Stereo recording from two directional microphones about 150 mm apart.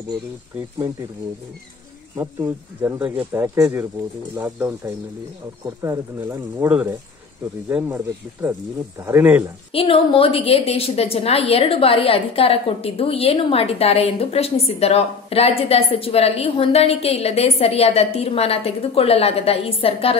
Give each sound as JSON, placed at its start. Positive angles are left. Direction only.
{"t": 2.1, "sound": "speech", "side_deg": -15}
{"t": 9.7, "sound": "a woman's voice", "side_deg": 40}